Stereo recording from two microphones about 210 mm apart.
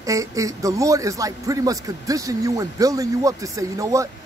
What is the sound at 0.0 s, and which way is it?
A man's voice, 15° right (ahead or behind).